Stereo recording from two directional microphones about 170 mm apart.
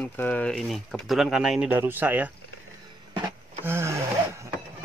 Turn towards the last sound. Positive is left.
turn(degrees=-15)  # may be behind; listen again after turning